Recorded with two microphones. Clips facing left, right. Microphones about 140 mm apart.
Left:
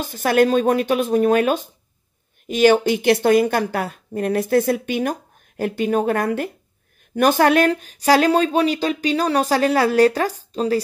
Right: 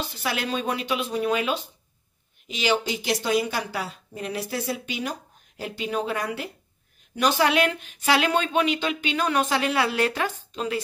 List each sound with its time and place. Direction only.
0.0 s speech: 45° left (ahead or behind)